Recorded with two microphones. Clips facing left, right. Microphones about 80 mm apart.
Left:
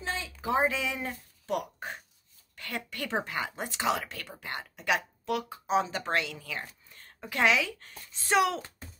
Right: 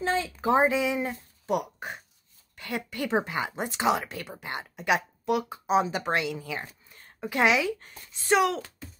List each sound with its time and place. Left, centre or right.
0.0 s a sound: right
0.7 s speech: centre
8.0 s speech: centre